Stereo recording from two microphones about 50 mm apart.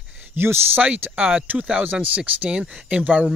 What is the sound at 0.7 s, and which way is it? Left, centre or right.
Speech, right.